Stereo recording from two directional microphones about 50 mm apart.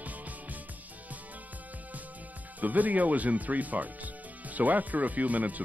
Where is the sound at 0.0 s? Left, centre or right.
Right.